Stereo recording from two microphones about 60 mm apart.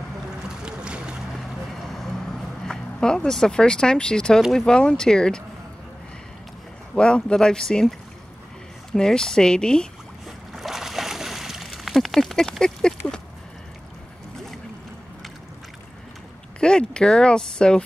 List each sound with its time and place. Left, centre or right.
0.5 s boat: centre
1.3 s a sound: centre
4.6 s speech: centre
7.0 s speech: centre
8.9 s speech: centre
10.2 s splash: centre
16.5 s speech: centre